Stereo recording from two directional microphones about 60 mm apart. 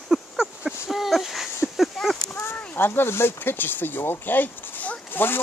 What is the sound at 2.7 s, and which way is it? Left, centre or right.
Speech, left.